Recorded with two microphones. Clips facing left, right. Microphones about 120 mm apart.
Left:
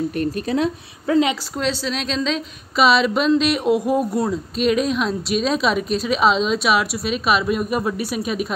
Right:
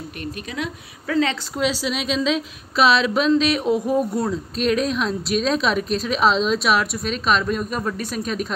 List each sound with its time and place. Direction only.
0.2 s speech: 35° left (ahead or behind)
1.6 s speech: 10° right (ahead or behind)